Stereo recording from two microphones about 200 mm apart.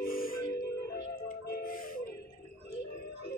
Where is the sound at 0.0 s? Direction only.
45° left (ahead or behind).